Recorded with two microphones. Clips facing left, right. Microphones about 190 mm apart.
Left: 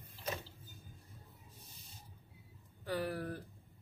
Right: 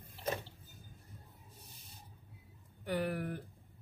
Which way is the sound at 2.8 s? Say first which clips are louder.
Right 2 dB; 20° right (ahead or behind).